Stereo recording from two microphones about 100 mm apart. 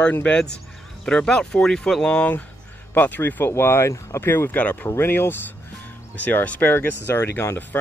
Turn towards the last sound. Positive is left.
turn(degrees=20)  # may be behind; listen again after turning